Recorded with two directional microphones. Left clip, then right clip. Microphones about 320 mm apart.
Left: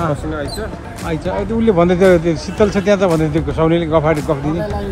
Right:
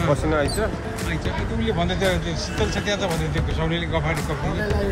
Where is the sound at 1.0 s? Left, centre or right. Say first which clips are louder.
Left 11 dB; centre.